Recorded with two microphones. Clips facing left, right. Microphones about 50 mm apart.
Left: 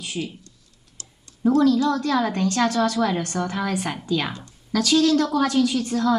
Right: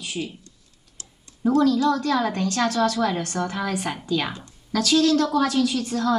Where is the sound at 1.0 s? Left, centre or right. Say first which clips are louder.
Left 1 dB; centre.